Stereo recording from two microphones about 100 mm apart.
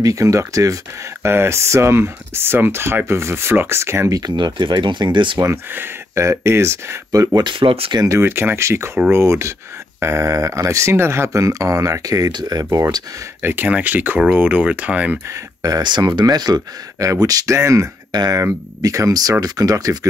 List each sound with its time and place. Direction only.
0.0 s speech: 35° right (ahead or behind)
4.2 s speech: 45° right (ahead or behind)
5.4 s speech: 30° right (ahead or behind)
7.5 s speech: 65° right (ahead or behind)
8.0 s speech: 30° right (ahead or behind)
13.4 s speech: 20° right (ahead or behind)
15.6 s speech: 45° right (ahead or behind)